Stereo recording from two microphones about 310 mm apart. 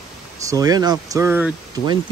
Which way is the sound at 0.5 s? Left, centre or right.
Centre.